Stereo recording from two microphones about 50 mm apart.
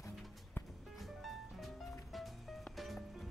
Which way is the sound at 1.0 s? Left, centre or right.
Centre.